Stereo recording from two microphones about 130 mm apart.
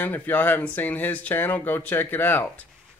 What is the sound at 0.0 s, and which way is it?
Speech, 15° left (ahead or behind).